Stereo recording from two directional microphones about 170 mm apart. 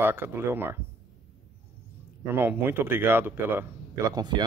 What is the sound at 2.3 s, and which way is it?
Speech, 15° right (ahead or behind).